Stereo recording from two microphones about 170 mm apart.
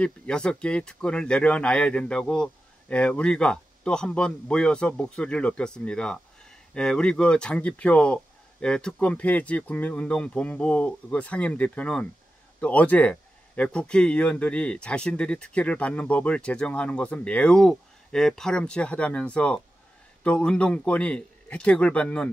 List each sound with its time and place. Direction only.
0.0 s speech: 5° left (ahead or behind)